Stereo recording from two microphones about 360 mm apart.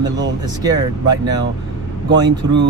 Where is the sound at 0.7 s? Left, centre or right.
Centre.